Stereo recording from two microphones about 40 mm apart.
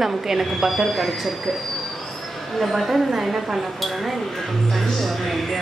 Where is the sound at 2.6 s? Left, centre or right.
Centre.